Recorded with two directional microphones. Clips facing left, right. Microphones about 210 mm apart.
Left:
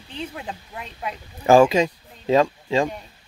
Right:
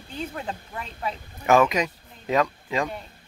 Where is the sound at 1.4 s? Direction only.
30° left (ahead or behind).